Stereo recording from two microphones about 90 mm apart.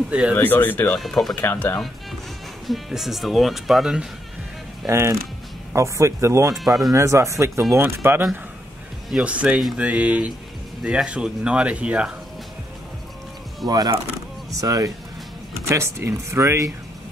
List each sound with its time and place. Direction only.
0.1 s speech: 10° right (ahead or behind)
0.4 s speech: 20° left (ahead or behind)
0.9 s speech: 5° left (ahead or behind)
1.3 s speech: 20° left (ahead or behind)
2.6 s speech: centre (ahead or behind)
4.8 s speech: 30° right (ahead or behind)
9.1 s speech: 15° right (ahead or behind)
13.7 s speech: 45° right (ahead or behind)
15.7 s speech: 30° right (ahead or behind)